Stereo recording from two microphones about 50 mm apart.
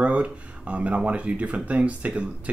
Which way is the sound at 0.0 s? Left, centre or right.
Right.